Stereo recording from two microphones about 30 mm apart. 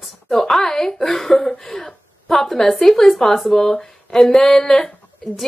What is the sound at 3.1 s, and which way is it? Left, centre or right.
Speech, centre.